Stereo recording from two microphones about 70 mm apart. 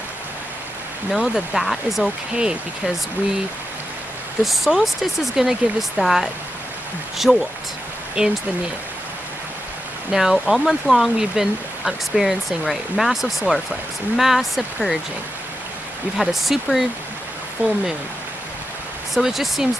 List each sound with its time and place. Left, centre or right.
1.1 s speech: centre
2.3 s speech: centre
4.5 s speech: centre
10.1 s speech: centre
16.2 s speech: centre
17.6 s speech: right
19.1 s speech: centre